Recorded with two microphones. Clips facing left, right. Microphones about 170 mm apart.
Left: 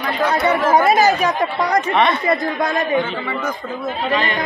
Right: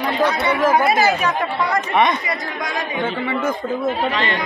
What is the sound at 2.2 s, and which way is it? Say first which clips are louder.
Speech: left 7 dB; 55° left (ahead or behind).